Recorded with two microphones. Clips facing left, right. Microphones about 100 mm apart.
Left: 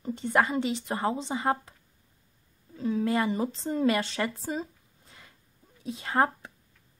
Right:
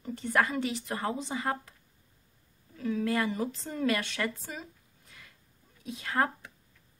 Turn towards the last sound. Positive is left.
turn(degrees=25)  # may be behind; listen again after turning